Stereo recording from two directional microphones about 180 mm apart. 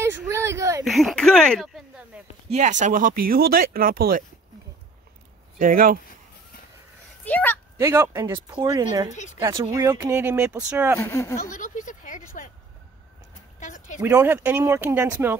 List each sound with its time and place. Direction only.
0.0 s a sound: 15° right (ahead or behind)
0.8 s speech: centre (ahead or behind)
2.5 s speech: 40° right (ahead or behind)
5.6 s speech: 50° right (ahead or behind)
7.2 s speech: 10° left (ahead or behind)
7.7 s speech: 15° right (ahead or behind)
11.0 s speech: 15° left (ahead or behind)
11.4 s a sound: 45° left (ahead or behind)
13.6 s a sound: 45° left (ahead or behind)
13.9 s speech: 15° right (ahead or behind)